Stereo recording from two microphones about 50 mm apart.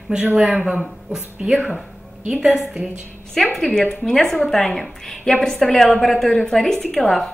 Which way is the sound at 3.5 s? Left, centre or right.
Centre.